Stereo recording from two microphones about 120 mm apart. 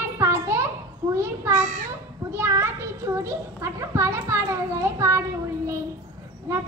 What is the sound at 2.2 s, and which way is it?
Children playing, 25° right (ahead or behind).